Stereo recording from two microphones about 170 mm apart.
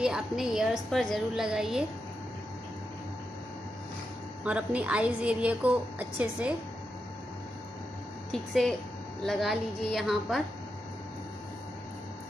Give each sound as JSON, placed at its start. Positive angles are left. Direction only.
{"t": 0.0, "sound": "a woman's voice", "side_deg": -5}
{"t": 4.5, "sound": "a woman's voice", "side_deg": -5}
{"t": 8.3, "sound": "a woman's voice", "side_deg": 0}